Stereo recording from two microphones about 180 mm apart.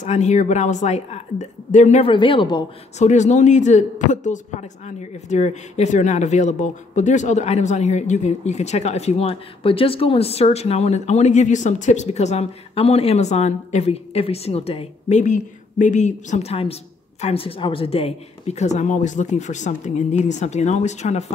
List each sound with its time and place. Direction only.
0.0 s speech: 40° left (ahead or behind)
3.0 s speech: 40° left (ahead or behind)